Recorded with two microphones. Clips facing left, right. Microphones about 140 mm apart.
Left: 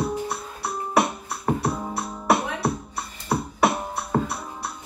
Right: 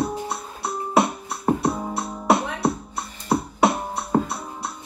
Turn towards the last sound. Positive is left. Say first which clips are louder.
# even
turn(degrees=-20)  # may be behind; listen again after turning